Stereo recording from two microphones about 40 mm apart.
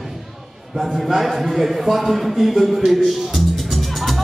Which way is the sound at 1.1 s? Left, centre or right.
Centre.